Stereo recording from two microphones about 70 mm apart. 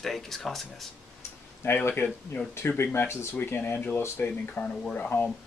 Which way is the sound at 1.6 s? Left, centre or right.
Left.